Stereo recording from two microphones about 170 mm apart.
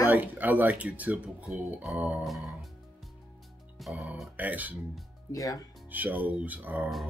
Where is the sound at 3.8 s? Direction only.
5° right (ahead or behind).